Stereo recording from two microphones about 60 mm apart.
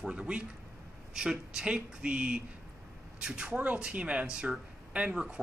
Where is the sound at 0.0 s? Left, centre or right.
Centre.